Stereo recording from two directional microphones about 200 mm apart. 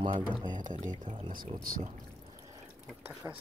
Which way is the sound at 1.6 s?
45° right (ahead or behind).